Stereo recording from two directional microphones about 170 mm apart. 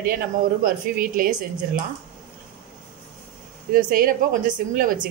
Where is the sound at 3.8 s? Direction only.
55° right (ahead or behind).